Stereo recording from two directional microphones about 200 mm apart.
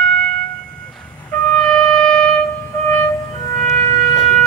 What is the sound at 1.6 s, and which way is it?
Wind instrument, 5° left (ahead or behind).